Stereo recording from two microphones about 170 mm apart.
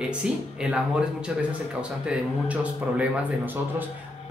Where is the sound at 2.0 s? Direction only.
5° right (ahead or behind).